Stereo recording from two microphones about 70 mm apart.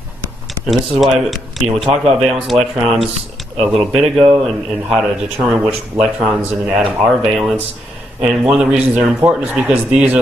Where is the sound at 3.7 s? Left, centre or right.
Centre.